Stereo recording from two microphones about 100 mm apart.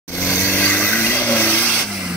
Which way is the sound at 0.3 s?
15° left (ahead or behind).